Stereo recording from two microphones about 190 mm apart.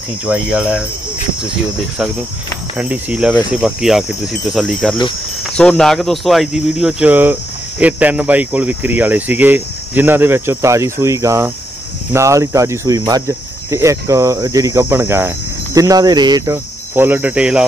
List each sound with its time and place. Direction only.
0.2 s speech: 5° right (ahead or behind)
2.8 s cricket: 5° right (ahead or behind)
3.5 s speech: 5° right (ahead or behind)
7.8 s cricket: 10° right (ahead or behind)